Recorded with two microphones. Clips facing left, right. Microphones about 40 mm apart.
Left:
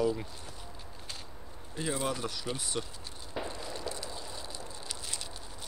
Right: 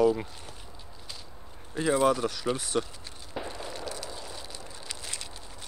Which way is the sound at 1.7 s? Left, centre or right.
Right.